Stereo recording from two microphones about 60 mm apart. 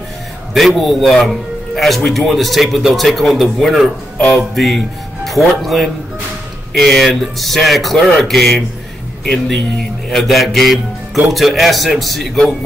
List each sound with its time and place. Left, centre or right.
0.6 s speech: centre
10.0 s speech: centre